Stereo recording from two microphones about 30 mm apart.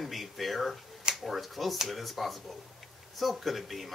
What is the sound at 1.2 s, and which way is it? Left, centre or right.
A man's voice, centre.